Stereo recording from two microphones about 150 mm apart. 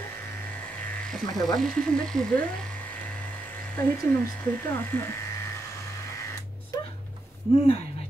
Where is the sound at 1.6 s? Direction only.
5° left (ahead or behind).